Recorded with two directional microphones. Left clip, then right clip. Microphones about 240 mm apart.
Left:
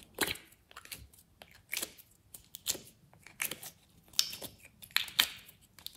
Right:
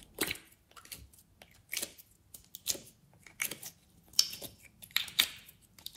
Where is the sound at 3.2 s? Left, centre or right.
Centre.